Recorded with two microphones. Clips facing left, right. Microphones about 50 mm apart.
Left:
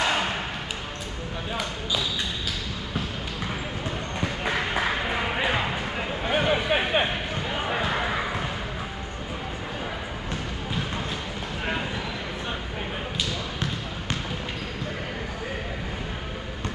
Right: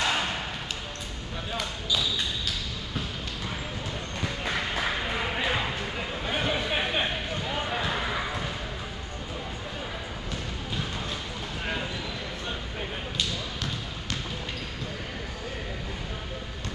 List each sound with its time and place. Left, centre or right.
0.0 s basketball bounce: centre
1.5 s basketball bounce: centre
4.2 s music: centre